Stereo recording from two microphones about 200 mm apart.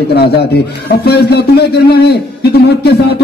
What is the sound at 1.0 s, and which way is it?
A man's voice, 55° left (ahead or behind).